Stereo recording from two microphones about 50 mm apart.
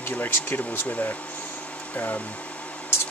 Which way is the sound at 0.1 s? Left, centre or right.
Left.